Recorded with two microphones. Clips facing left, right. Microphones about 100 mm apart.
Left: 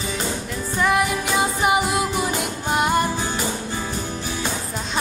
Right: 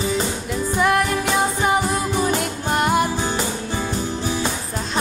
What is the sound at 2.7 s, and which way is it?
Music, centre (ahead or behind).